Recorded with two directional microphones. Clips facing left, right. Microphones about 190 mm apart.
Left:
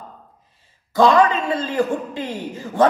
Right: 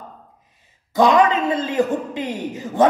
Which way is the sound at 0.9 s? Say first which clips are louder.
Even; 20° right (ahead or behind).